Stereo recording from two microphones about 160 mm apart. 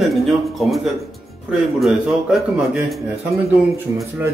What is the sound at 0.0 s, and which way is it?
Speech, centre (ahead or behind).